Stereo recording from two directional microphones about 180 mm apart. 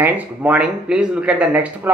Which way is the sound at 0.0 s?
10° right (ahead or behind).